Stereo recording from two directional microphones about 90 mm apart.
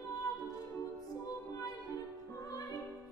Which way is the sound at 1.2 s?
40° left (ahead or behind).